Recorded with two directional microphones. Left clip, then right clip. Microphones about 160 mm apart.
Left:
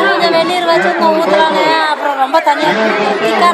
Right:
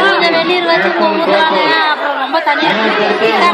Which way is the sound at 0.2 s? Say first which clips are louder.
Even; 70° left (ahead or behind).